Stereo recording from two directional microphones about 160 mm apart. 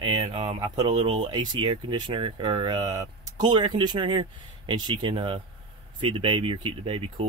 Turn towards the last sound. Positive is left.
turn(degrees=-35)  # may be behind; listen again after turning